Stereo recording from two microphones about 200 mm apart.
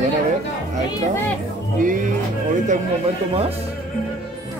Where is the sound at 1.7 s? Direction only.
40° right (ahead or behind).